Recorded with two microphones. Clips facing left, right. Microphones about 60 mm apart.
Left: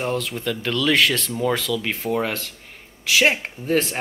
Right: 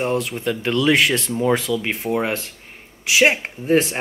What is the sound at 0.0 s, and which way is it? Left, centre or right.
Speech, right.